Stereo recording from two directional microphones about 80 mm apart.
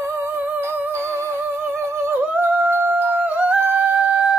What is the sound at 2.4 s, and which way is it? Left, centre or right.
Humming, right.